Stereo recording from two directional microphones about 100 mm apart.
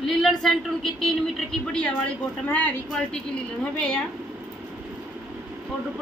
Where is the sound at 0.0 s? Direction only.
5° left (ahead or behind).